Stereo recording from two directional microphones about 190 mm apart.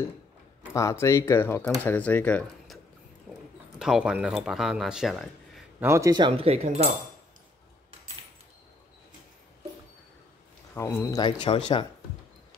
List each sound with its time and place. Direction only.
0.7 s speech: 15° left (ahead or behind)
3.3 s clip-clop: 10° right (ahead or behind)
3.8 s speech: 5° right (ahead or behind)
5.9 s speech: 15° right (ahead or behind); by 6.9 s 35° right (ahead or behind)
10.7 s speech: 10° left (ahead or behind); by 11.8 s 30° left (ahead or behind)